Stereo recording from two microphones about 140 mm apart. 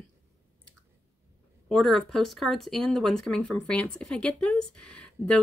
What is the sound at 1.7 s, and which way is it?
Speech, 5° left (ahead or behind).